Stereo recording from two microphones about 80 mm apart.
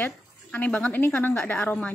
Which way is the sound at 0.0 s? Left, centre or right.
Centre.